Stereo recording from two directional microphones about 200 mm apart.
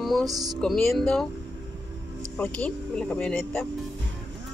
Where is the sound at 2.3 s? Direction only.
5° left (ahead or behind).